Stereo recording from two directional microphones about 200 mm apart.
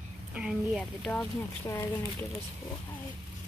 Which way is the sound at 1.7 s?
15° left (ahead or behind).